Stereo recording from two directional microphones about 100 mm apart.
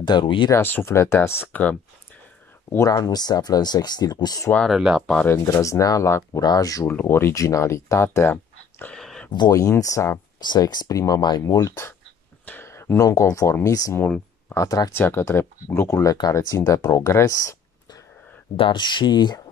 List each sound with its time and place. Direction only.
0.0 s speech: 50° left (ahead or behind)
0.5 s speech: 20° left (ahead or behind)
2.9 s speech: 40° left (ahead or behind)
4.6 s speech: 5° right (ahead or behind)
5.4 s speech: 35° left (ahead or behind)
6.9 s speech: 20° left (ahead or behind)
8.9 s a sound: 5° left (ahead or behind)
9.5 s speech: 35° left (ahead or behind)
10.4 s speech: 45° left (ahead or behind)
18.6 s speech: 55° left (ahead or behind)